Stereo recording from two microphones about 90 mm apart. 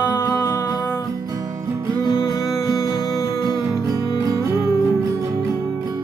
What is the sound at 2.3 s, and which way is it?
Music, 35° left (ahead or behind).